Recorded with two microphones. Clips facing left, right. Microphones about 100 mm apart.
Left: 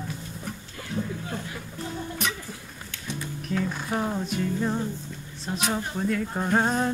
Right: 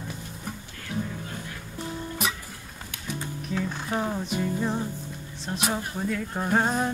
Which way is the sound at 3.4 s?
Centre (ahead or behind).